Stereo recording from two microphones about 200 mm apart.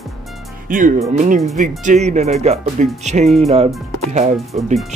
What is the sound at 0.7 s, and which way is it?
Speech, 45° right (ahead or behind).